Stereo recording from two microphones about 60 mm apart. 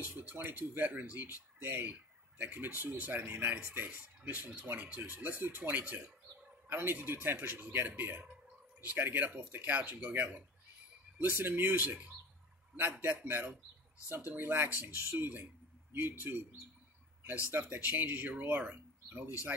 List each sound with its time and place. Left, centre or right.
0.0 s speech: right
17.5 s speech: right